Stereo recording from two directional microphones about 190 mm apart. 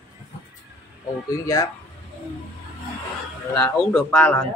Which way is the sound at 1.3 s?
15° left (ahead or behind).